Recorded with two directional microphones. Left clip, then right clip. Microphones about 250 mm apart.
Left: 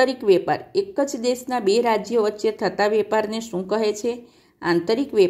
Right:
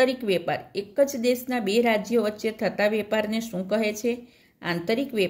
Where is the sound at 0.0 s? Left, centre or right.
Centre.